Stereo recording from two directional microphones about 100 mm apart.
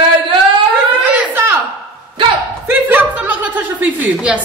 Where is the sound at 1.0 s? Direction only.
15° right (ahead or behind).